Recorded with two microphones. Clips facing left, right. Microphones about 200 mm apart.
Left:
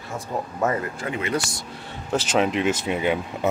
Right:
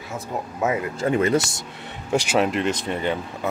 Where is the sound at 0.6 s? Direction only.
5° right (ahead or behind).